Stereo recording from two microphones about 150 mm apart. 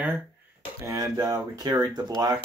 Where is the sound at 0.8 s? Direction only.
20° right (ahead or behind).